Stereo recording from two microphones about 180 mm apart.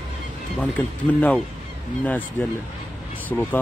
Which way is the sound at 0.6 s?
10° left (ahead or behind).